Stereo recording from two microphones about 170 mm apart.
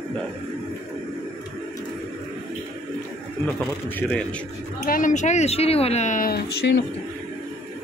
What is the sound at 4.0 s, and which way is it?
Speech, 10° left (ahead or behind).